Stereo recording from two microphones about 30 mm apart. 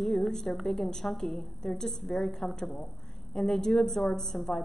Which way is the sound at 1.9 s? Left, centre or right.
Centre.